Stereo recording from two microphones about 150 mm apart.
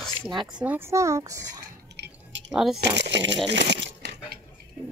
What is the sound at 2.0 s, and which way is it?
Chewing, 90° right.